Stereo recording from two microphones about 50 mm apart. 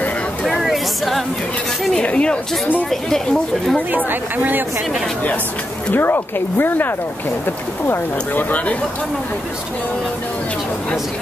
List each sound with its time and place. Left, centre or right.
0.5 s speech: centre
2.0 s speech: left
3.9 s speech: right
5.9 s speech: left
8.4 s speech: left